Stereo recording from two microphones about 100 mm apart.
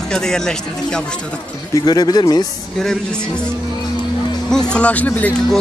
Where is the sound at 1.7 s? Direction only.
40° left (ahead or behind).